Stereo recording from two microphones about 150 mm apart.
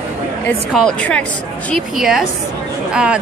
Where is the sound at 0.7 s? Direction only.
5° left (ahead or behind).